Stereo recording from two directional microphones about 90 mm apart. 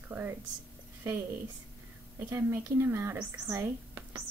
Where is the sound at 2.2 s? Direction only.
25° right (ahead or behind).